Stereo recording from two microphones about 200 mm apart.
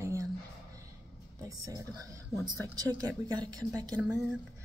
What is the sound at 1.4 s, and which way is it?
A woman's voice, 15° right (ahead or behind).